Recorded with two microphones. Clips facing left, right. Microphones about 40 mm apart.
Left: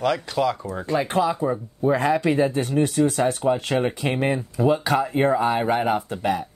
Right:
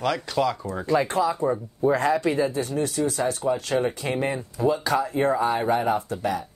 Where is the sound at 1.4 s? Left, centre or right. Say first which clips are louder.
Even; centre.